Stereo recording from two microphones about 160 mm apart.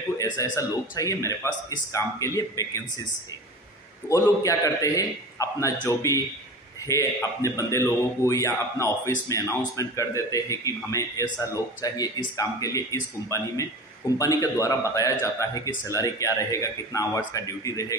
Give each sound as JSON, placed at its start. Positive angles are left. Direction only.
{"t": 0.2, "sound": "speech", "side_deg": 20}
{"t": 4.1, "sound": "speech", "side_deg": 20}